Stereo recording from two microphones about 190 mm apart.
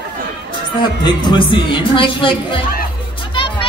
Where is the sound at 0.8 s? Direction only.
25° left (ahead or behind).